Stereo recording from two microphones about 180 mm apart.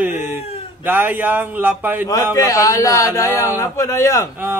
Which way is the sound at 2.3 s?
20° left (ahead or behind).